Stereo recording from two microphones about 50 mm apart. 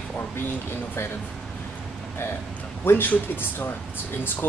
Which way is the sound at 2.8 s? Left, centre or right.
Left.